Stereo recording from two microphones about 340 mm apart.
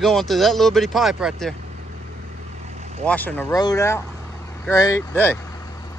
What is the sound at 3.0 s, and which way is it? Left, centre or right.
Speech, centre.